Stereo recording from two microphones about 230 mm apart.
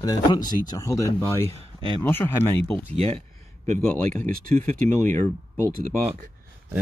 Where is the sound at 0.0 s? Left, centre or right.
Centre.